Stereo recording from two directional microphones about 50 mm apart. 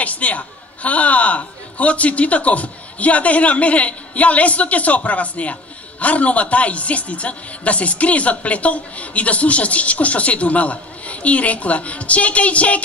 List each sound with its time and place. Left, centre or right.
0.0 s a man's voice: left